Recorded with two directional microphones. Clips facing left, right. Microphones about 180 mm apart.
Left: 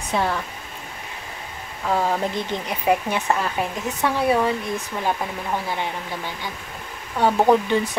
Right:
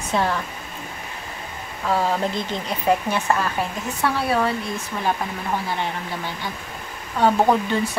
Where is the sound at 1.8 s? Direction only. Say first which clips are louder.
Even; 15° left (ahead or behind).